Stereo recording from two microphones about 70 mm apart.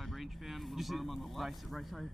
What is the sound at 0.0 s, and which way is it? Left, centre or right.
Speech, centre.